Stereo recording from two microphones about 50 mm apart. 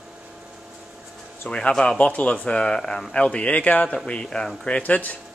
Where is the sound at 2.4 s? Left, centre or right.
Centre.